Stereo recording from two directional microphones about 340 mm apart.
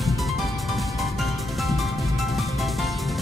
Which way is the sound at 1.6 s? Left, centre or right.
Centre.